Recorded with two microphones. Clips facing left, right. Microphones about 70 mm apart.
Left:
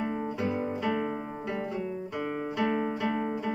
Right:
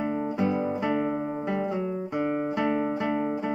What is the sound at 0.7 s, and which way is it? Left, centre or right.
Guitar, centre.